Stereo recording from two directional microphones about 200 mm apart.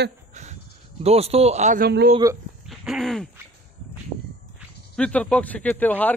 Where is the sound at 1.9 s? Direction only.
55° right (ahead or behind).